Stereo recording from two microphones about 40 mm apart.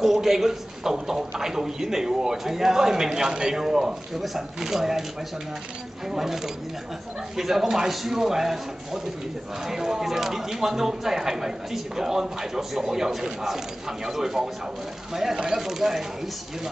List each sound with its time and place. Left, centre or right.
0.0 s a man's voice: centre
6.0 s speech: centre